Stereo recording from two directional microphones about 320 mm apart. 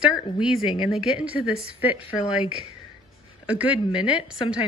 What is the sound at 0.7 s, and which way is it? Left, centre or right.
A woman's voice, centre.